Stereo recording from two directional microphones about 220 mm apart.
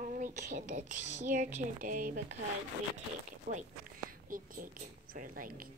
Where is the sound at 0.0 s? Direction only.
35° right (ahead or behind).